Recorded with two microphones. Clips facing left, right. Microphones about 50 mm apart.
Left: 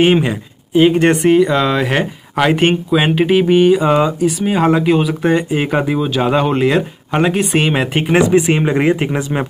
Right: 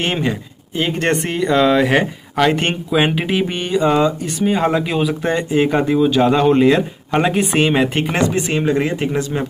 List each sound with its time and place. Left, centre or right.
0.0 s speech: centre; by 9.5 s left